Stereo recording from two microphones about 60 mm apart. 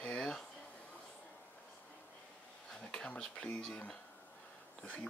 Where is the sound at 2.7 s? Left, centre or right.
Centre.